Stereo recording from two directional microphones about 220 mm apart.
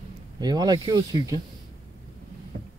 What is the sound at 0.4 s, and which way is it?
Speech, 20° right (ahead or behind).